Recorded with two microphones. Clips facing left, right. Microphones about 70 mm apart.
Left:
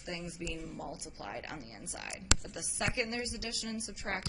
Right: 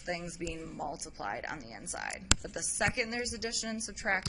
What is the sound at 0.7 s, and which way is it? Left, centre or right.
Speech, centre.